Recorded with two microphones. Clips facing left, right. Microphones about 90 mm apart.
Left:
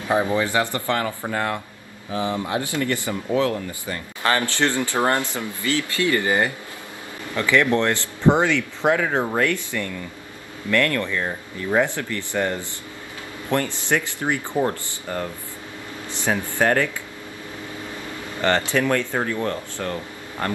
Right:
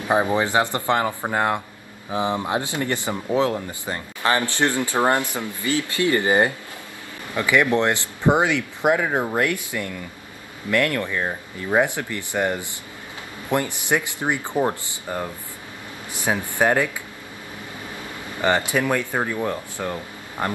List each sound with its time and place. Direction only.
0.1 s speech: 20° right (ahead or behind)
18.4 s speech: 15° right (ahead or behind)